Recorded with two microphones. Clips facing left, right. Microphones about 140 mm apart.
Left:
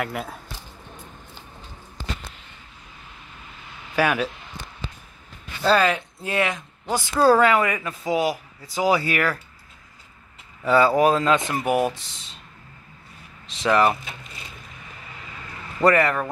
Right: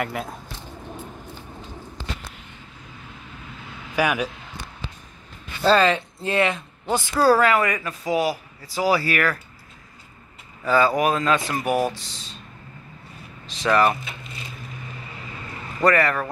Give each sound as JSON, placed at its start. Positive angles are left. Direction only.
{"t": 0.0, "sound": "speech", "side_deg": 0}
{"t": 3.9, "sound": "speech", "side_deg": -10}
{"t": 5.6, "sound": "speech", "side_deg": 5}
{"t": 10.7, "sound": "speech", "side_deg": 25}
{"t": 13.6, "sound": "speech", "side_deg": 20}
{"t": 15.8, "sound": "speech", "side_deg": 20}